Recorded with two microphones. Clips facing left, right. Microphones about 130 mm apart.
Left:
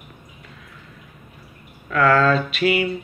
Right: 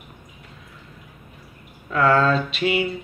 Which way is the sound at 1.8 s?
25° right (ahead or behind).